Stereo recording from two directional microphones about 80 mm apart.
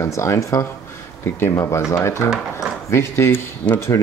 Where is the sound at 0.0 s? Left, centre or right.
Left.